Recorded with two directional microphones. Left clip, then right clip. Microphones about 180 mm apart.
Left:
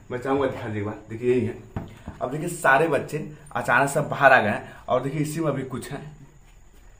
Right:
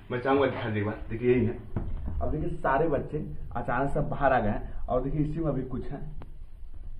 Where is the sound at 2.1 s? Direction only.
25° left (ahead or behind).